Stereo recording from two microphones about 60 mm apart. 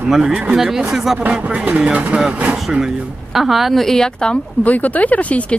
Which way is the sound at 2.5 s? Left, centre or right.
Centre.